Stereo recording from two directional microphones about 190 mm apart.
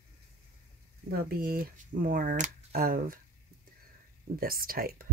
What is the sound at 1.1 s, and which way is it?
Speech, 50° right (ahead or behind).